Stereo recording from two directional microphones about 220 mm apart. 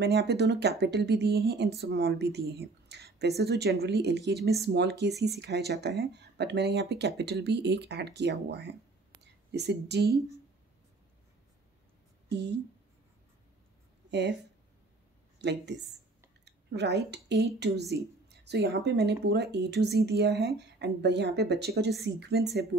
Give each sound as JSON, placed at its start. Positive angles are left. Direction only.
{"t": 0.0, "sound": "speech", "side_deg": -50}
{"t": 12.3, "sound": "speech", "side_deg": -50}
{"t": 15.4, "sound": "speech", "side_deg": -50}